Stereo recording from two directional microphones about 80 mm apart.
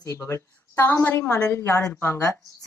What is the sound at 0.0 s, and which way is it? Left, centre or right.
Speech, left.